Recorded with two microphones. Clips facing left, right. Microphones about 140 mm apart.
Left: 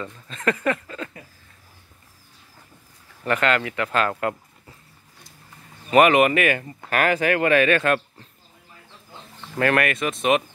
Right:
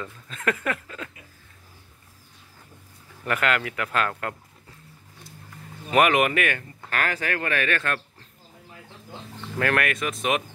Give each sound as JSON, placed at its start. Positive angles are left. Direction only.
{"t": 0.0, "sound": "speech", "side_deg": -5}
{"t": 3.3, "sound": "speech", "side_deg": -5}
{"t": 4.1, "sound": "a sound", "side_deg": 10}
{"t": 5.9, "sound": "speech", "side_deg": 0}
{"t": 9.6, "sound": "speech", "side_deg": 0}